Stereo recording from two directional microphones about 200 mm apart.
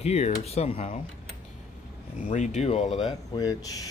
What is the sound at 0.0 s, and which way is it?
Speech, 35° left (ahead or behind).